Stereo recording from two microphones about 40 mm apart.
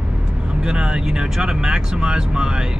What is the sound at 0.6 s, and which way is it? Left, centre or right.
Speech, right.